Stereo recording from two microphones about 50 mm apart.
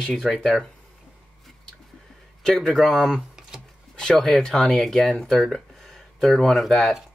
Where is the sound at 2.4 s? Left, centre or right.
Centre.